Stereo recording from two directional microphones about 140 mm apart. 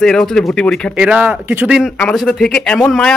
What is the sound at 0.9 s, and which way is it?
Speech, 10° right (ahead or behind).